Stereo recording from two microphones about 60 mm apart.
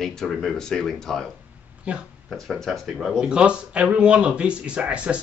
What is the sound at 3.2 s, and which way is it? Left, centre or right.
Speech, centre.